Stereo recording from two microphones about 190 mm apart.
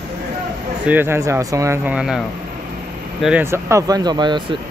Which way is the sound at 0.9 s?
10° right (ahead or behind).